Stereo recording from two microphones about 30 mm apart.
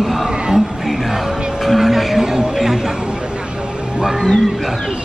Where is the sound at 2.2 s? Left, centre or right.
Centre.